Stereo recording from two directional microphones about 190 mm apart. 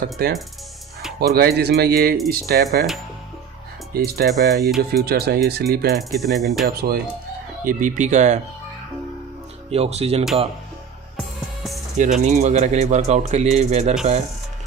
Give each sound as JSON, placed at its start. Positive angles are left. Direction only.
{"t": 0.2, "sound": "speech", "side_deg": -55}
{"t": 3.9, "sound": "speech", "side_deg": -55}
{"t": 4.3, "sound": "speech", "side_deg": 0}
{"t": 5.0, "sound": "speech", "side_deg": -55}
{"t": 5.9, "sound": "speech", "side_deg": 0}
{"t": 6.6, "sound": "speech", "side_deg": -50}
{"t": 9.7, "sound": "speech", "side_deg": -35}
{"t": 12.0, "sound": "speech", "side_deg": -40}